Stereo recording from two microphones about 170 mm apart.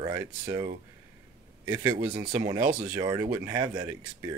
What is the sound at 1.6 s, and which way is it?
Speech, 15° right (ahead or behind).